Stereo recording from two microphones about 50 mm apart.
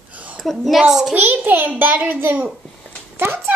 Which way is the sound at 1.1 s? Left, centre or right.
Right.